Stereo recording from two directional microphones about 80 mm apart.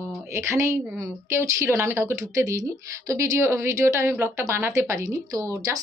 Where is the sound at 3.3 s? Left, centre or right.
Right.